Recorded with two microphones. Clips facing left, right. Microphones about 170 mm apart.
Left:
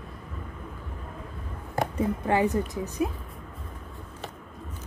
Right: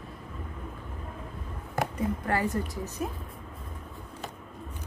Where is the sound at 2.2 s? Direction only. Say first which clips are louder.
Left 7 dB; 20° left (ahead or behind).